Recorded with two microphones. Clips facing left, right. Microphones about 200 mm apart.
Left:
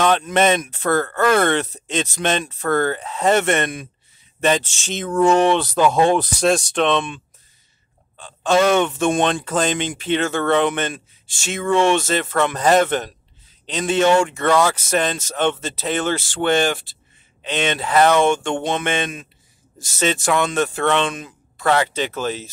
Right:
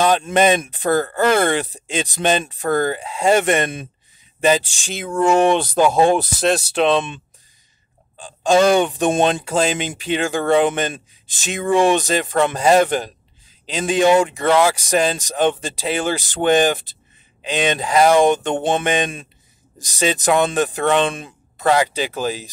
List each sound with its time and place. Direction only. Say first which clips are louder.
0.3 s speech: right 2 dB; 15° right (ahead or behind)
6.9 s speech: right 4 dB; 20° right (ahead or behind)
8.7 s speech: right 1 dB; 15° right (ahead or behind)